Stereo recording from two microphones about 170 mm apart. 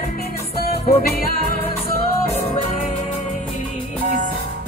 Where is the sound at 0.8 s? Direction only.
60° left (ahead or behind).